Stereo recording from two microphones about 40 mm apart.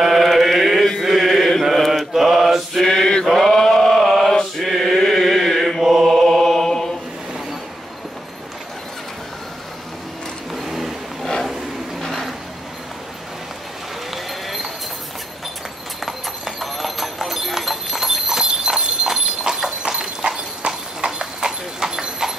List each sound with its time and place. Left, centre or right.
0.0 s chant: centre
2.1 s mantra: centre
2.8 s mantra: centre
3.3 s mantra: centre
4.6 s chant: centre
5.8 s mantra: centre
6.0 s mantra: centre
10.5 s vehicle: centre
12.1 s vehicle: centre
14.1 s basketball bounce: centre
16.1 s clip-clop: centre